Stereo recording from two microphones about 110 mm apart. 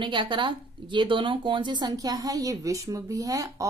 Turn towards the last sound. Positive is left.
turn(degrees=-30)  # may be behind; listen again after turning